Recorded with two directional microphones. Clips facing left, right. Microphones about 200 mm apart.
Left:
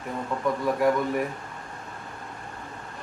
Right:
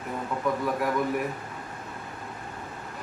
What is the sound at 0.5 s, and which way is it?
Speech, centre (ahead or behind).